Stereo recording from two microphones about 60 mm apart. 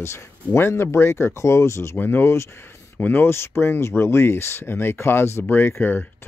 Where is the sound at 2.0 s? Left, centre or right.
Left.